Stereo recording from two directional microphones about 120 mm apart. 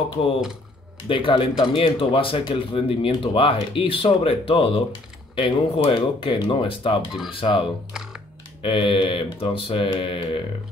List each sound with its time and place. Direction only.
0.1 s speech: 50° left (ahead or behind)
7.9 s music: 5° right (ahead or behind)
8.6 s speech: 45° left (ahead or behind)